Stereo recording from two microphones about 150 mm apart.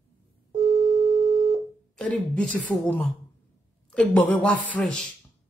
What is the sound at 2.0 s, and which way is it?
A man's voice, 10° left (ahead or behind).